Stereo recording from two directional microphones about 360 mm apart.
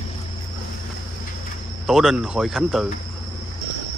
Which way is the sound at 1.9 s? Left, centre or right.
Centre.